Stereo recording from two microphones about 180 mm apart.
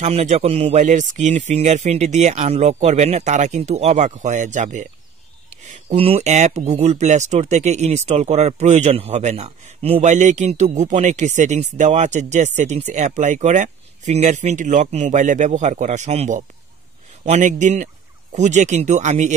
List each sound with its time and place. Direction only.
0.0 s speech: 40° right (ahead or behind)